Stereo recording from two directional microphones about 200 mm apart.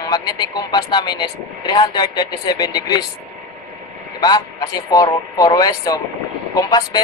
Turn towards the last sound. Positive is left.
turn(degrees=20)  # may be behind; listen again after turning